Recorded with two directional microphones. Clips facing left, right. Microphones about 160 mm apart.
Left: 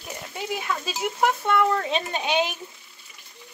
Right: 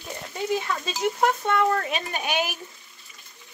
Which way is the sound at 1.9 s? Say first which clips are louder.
Left 3 dB; 25° left (ahead or behind).